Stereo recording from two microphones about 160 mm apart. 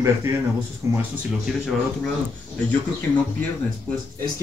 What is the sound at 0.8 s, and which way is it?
Speech, 15° right (ahead or behind).